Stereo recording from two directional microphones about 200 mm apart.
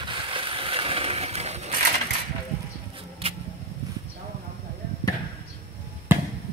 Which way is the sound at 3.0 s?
30° right (ahead or behind).